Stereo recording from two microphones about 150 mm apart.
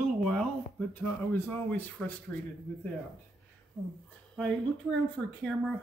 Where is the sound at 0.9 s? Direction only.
10° left (ahead or behind).